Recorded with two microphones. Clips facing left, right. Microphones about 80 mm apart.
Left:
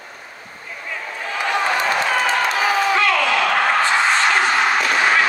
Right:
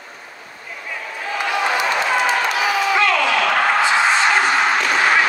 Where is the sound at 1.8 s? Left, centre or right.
Left.